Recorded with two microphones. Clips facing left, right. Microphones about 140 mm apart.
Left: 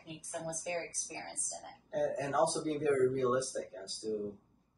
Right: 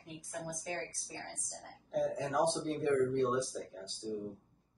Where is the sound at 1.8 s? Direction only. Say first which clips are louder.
Even; centre (ahead or behind).